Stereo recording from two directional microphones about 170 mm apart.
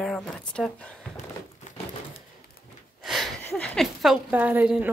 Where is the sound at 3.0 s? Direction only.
Centre (ahead or behind).